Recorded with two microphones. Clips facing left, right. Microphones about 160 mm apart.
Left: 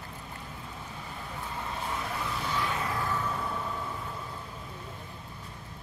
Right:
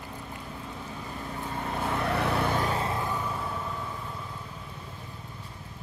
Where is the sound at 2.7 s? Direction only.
25° right (ahead or behind); by 3.6 s 5° right (ahead or behind).